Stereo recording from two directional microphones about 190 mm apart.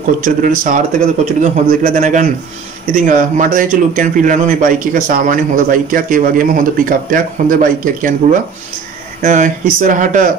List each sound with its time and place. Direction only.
0.2 s a man's voice: 45° right (ahead or behind)